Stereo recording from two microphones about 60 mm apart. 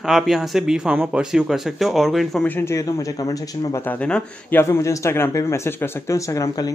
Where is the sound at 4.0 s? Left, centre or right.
Centre.